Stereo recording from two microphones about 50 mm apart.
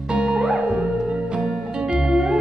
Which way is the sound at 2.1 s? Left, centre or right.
Centre.